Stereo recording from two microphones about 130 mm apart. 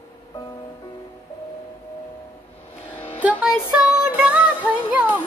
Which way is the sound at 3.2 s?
10° right (ahead or behind).